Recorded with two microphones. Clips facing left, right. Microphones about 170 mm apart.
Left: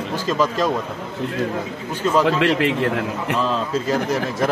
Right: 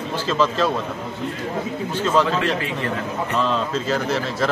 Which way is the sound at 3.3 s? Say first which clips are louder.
Even; 5° left (ahead or behind).